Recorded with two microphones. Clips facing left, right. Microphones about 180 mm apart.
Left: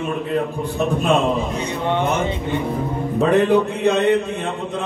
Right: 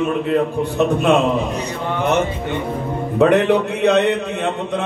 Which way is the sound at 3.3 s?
70° right (ahead or behind).